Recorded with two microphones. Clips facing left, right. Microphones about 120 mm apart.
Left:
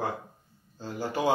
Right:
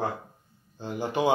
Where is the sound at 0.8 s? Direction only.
20° right (ahead or behind).